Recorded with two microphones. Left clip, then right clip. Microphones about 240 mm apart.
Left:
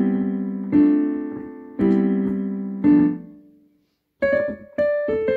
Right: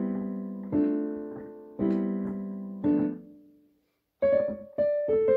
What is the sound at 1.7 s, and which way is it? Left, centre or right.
Music, left.